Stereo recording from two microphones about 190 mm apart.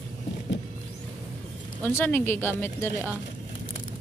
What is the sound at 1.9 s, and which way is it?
Speech, 10° left (ahead or behind).